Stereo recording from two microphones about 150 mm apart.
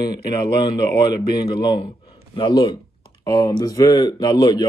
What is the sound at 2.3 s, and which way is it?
Speech, 35° left (ahead or behind).